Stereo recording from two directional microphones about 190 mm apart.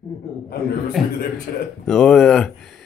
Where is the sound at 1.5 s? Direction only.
45° left (ahead or behind).